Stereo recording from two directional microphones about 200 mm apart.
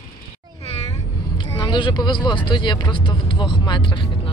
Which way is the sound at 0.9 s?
20° left (ahead or behind).